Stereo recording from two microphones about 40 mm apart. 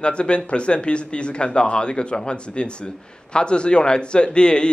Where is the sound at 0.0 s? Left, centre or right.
Left.